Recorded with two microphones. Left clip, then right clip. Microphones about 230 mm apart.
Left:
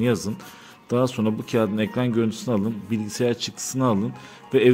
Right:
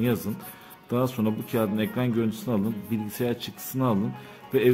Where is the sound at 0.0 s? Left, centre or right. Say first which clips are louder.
Left 4 dB; centre.